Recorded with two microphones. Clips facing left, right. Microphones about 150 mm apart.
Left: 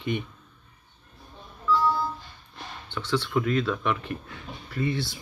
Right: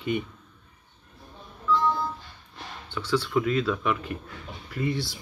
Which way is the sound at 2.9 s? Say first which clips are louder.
Right 1 dB; 10° right (ahead or behind).